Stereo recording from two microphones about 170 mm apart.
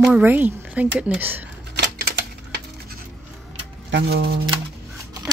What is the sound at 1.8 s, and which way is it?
Typewriter, 85° right.